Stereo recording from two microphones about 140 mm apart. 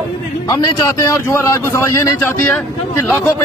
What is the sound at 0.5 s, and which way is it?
A man's voice, 30° left (ahead or behind).